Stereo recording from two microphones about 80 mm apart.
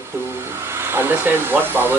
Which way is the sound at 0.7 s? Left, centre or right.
Right.